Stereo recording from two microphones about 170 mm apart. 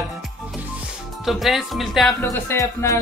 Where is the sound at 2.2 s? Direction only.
15° left (ahead or behind).